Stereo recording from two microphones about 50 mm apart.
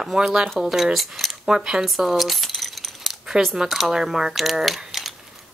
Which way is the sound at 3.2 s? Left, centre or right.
Centre.